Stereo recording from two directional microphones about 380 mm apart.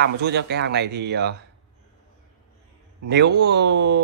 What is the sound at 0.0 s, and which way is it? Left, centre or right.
A man's voice, right.